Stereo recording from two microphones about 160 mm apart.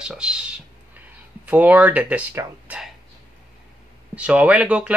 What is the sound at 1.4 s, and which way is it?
Speech, 10° right (ahead or behind).